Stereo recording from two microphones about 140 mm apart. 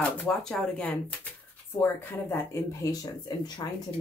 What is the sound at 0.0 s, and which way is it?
Speech, 5° left (ahead or behind).